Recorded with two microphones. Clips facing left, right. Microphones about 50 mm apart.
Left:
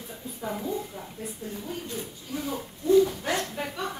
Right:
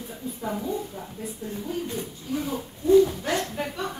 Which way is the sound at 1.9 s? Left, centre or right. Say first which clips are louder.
Right 4 dB; centre.